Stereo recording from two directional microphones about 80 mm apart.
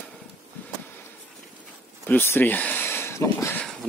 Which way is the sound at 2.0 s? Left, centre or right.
Left.